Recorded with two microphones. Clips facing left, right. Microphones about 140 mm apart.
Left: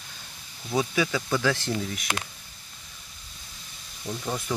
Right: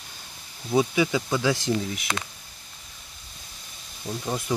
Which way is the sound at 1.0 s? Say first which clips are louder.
Right 2 dB; 15° right (ahead or behind).